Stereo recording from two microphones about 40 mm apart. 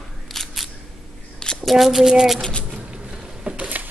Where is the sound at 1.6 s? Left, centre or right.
Centre.